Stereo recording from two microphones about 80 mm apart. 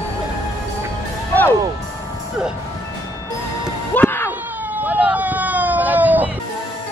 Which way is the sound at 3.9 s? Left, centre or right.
Left.